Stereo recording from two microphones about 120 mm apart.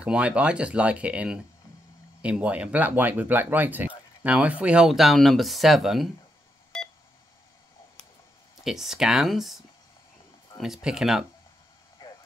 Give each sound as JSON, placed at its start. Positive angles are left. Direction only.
{"t": 0.0, "sound": "speech", "side_deg": -10}
{"t": 8.6, "sound": "speech", "side_deg": -5}
{"t": 10.6, "sound": "speech", "side_deg": -5}
{"t": 12.0, "sound": "vehicle", "side_deg": 40}